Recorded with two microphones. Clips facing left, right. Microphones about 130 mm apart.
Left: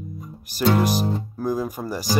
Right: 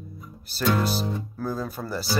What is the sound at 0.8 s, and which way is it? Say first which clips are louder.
Music: left 5 dB; 15° left (ahead or behind).